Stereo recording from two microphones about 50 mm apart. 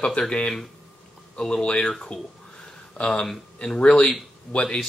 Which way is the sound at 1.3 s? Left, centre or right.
Centre.